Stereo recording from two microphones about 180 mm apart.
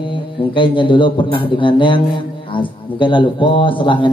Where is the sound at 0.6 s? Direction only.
25° left (ahead or behind).